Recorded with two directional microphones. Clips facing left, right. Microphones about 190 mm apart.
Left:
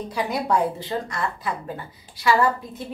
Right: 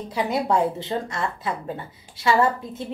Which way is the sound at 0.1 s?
25° right (ahead or behind).